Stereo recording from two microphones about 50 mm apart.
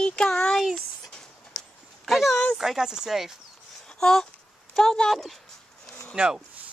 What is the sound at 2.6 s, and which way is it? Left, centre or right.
Speech, centre.